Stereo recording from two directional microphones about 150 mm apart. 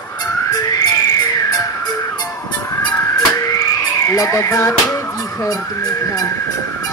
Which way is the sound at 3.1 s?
25° left (ahead or behind).